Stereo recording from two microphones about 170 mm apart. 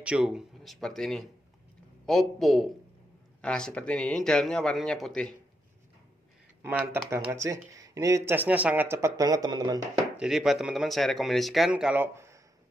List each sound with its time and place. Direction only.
0.0 s speech: 5° right (ahead or behind)
6.6 s speech: 15° right (ahead or behind)
10.1 s speech: 5° right (ahead or behind)